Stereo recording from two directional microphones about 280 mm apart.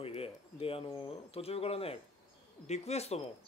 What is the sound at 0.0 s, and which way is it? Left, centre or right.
Speech, left.